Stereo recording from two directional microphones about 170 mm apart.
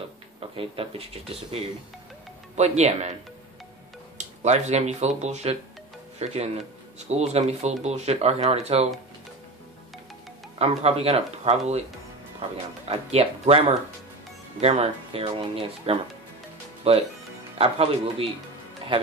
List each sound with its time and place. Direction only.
0.4 s speech: 35° right (ahead or behind)
4.2 s speech: 40° right (ahead or behind)
10.6 s speech: 35° right (ahead or behind)